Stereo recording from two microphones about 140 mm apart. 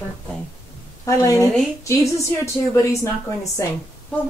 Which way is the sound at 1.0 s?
25° left (ahead or behind).